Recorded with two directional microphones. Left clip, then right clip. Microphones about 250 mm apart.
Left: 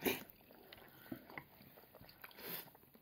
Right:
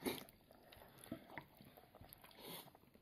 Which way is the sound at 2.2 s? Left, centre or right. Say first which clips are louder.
Left 4 dB; left.